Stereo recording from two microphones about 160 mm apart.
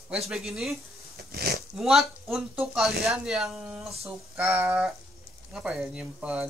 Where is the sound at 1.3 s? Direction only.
75° right (ahead or behind).